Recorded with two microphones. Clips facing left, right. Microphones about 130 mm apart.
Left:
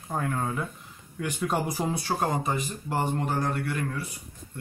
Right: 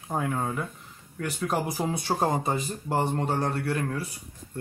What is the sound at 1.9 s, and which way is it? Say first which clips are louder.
Speech: right 4 dB; 25° right (ahead or behind).